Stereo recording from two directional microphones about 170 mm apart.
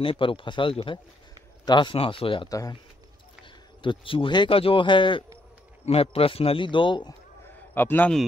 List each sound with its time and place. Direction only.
0.0 s speech: 30° left (ahead or behind)
3.8 s speech: 30° left (ahead or behind)
7.7 s a man's voice: 10° left (ahead or behind)